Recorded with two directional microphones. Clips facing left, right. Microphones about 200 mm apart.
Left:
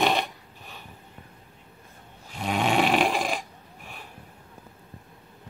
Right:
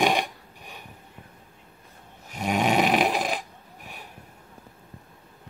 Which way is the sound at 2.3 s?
10° right (ahead or behind).